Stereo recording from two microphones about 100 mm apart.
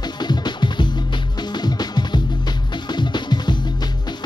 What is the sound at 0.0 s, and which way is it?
Music, 45° left (ahead or behind).